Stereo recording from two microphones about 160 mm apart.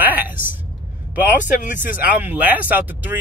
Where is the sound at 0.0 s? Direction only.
10° right (ahead or behind).